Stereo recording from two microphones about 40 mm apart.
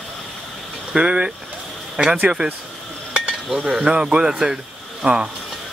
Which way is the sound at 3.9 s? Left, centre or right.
Right.